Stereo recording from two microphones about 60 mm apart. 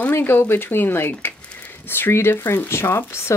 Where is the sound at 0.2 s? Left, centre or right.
Left.